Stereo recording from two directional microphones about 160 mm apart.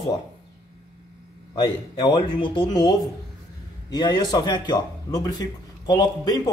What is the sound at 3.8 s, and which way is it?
Speech, 25° left (ahead or behind).